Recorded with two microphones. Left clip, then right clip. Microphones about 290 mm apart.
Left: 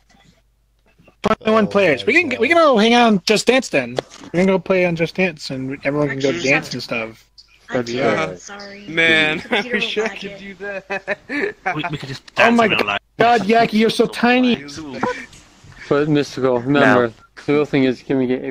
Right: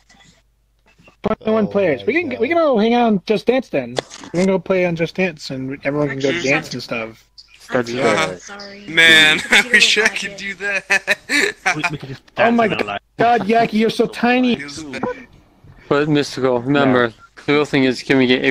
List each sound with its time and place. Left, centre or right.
1.2 s a man's voice: left
3.9 s speech: centre
4.5 s speech: centre
8.0 s a man's voice: right
8.5 s speech: centre
8.8 s a man's voice: right
11.9 s speech: centre
15.0 s speech: left
15.9 s speech: centre
17.5 s a man's voice: right
18.0 s a man's voice: right